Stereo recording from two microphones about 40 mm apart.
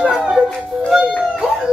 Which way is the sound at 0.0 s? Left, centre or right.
Centre.